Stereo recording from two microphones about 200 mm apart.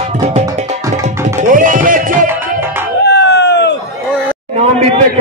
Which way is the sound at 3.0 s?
60° left (ahead or behind).